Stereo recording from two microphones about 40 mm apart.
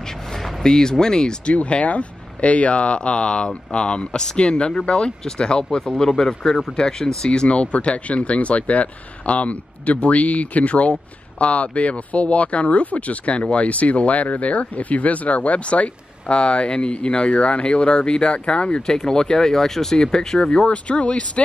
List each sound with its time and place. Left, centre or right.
0.4 s speech: centre
1.5 s speech: left; by 7.2 s centre
7.2 s speech: left
18.8 s speech: centre
20.6 s speech: left